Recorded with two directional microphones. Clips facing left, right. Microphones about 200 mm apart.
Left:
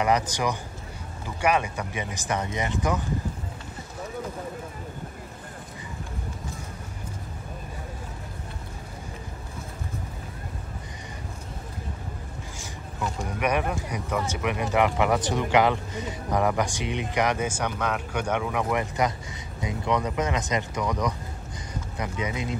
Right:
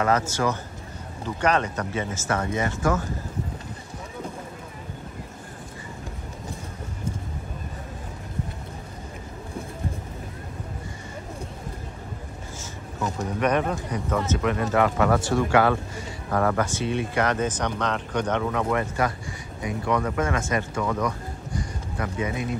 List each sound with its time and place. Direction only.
0.0 s speech: 15° left (ahead or behind)
13.4 s speech: 10° left (ahead or behind)
21.5 s a sound: 20° left (ahead or behind)